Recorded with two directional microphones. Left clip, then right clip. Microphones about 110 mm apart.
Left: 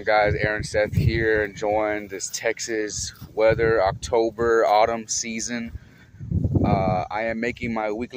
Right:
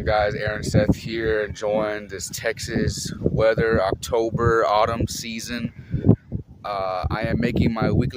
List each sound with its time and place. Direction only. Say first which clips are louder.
0.0 s speech: left 1 dB; 30° right (ahead or behind)